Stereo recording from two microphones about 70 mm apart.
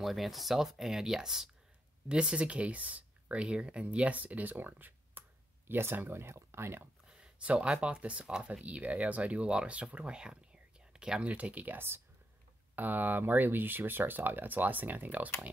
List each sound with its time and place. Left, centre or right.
0.0 s speech: centre; by 6.9 s right
7.1 s speech: centre